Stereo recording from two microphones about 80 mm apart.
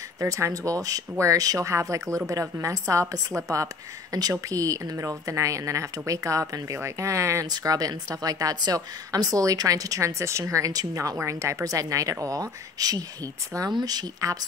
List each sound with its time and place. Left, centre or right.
0.2 s a woman's voice: right
7.5 s a woman's voice: right